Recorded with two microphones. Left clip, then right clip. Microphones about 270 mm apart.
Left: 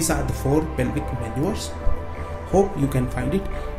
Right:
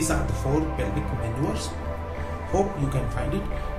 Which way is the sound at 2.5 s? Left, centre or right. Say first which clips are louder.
Left 5 dB; left.